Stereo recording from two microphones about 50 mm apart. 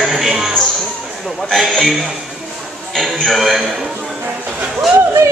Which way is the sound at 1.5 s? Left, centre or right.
Centre.